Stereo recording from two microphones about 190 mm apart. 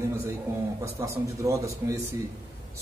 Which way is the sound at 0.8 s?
15° right (ahead or behind).